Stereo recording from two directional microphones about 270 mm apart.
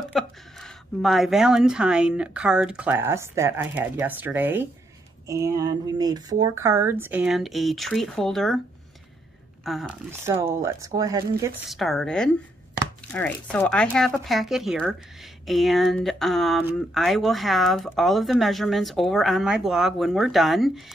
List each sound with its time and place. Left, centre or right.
0.0 s speech: centre
9.7 s speech: centre
11.7 s speech: centre